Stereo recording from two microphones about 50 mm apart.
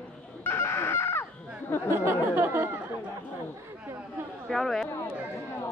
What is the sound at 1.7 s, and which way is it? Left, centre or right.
Speech, left.